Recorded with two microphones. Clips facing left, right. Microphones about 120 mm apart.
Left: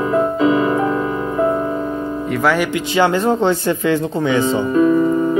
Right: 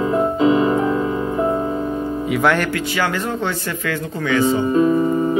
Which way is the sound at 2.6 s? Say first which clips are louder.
Left 5 dB; 20° left (ahead or behind).